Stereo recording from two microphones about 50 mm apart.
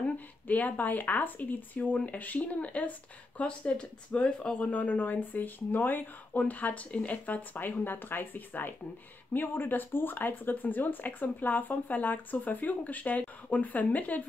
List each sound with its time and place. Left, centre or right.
0.0 s speech: left
3.7 s speech: centre
4.6 s speech: left